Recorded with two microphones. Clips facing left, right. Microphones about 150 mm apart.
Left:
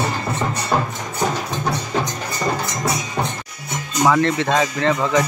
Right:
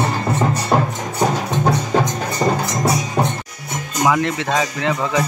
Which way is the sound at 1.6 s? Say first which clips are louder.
Right 5 dB; 50° right (ahead or behind).